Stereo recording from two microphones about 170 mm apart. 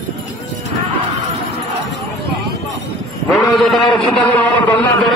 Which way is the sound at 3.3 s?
Centre (ahead or behind).